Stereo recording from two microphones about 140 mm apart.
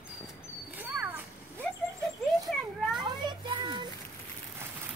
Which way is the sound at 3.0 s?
35° right (ahead or behind).